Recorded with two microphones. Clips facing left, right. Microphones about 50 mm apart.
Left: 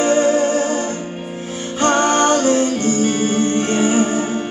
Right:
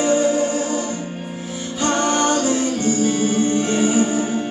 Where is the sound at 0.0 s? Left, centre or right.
Left.